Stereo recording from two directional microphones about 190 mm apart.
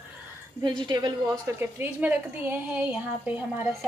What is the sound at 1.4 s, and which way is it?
A woman's voice, 10° right (ahead or behind).